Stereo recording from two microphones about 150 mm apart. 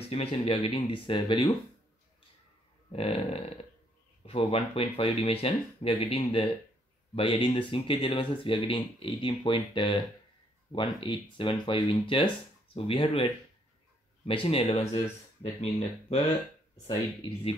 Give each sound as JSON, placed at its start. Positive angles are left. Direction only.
{"t": 0.1, "sound": "speech", "side_deg": 40}
{"t": 2.9, "sound": "speech", "side_deg": 45}